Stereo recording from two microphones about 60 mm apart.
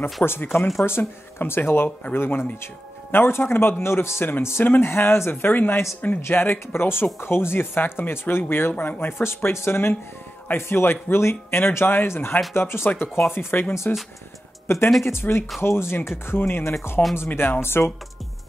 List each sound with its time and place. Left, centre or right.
0.2 s speech: left
14.7 s speech: left
17.0 s speech: left
17.6 s speech: left